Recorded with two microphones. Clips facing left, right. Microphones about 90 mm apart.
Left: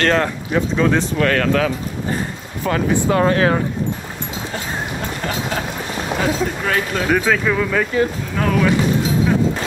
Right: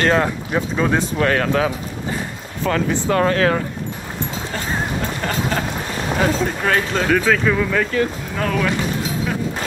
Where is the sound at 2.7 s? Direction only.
10° left (ahead or behind).